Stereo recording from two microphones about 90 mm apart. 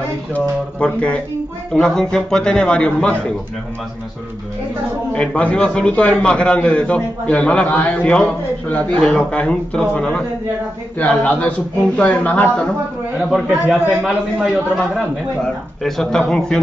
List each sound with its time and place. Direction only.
0.3 s a man's voice: 15° left (ahead or behind)
5.1 s a man's voice: 15° left (ahead or behind)
13.3 s speech: 5° right (ahead or behind)